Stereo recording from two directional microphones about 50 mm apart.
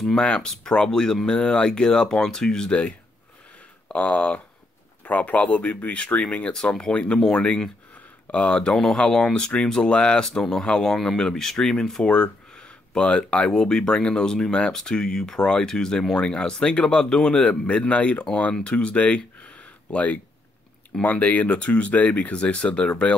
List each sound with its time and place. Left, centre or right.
0.0 s speech: centre
3.9 s speech: left
7.9 s a sound: left
8.9 s speech: centre
10.2 s speech: centre
12.1 s speech: left
18.5 s speech: centre